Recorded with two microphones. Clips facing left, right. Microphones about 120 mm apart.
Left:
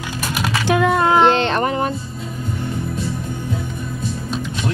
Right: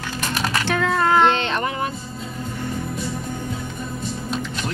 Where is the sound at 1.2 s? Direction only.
35° left (ahead or behind).